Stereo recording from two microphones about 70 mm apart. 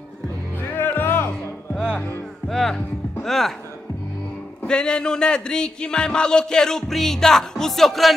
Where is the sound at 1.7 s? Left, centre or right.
Centre.